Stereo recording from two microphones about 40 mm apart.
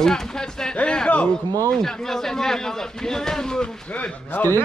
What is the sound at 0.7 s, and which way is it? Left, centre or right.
Speech, left.